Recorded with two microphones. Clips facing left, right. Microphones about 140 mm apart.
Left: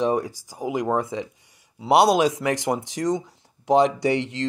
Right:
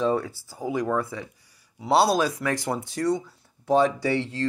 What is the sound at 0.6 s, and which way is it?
Speech, 20° left (ahead or behind).